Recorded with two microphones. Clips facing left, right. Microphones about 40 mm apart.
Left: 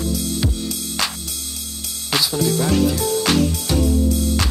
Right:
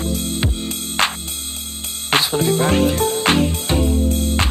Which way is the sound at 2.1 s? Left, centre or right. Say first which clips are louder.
Right 3 dB; right.